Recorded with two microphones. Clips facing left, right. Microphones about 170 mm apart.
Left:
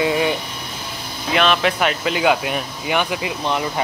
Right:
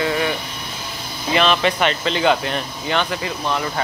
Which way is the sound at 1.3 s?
Centre (ahead or behind).